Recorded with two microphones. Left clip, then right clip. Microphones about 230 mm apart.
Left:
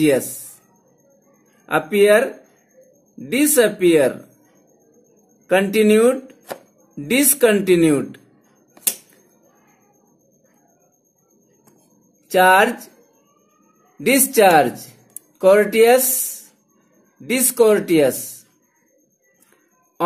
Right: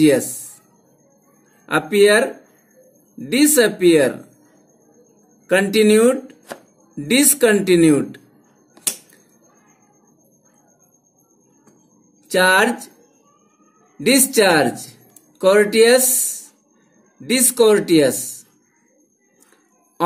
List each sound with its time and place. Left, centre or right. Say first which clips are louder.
1.7 s speech: even; centre
5.5 s speech: right 1 dB; centre
12.3 s speech: left 2 dB; centre
13.9 s speech: even; centre
14.9 s a sound: right 1 dB; centre
16.0 s speech: right 2 dB; left
17.2 s speech: right 1 dB; centre